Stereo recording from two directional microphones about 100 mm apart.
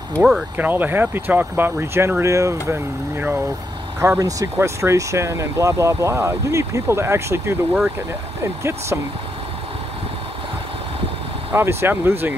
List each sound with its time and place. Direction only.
0.6 s speech: 20° right (ahead or behind)
11.5 s speech: 25° right (ahead or behind)